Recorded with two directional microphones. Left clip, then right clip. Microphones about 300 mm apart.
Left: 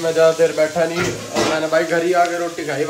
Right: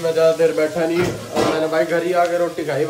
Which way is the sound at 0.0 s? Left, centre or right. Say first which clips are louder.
Left 1 dB; centre.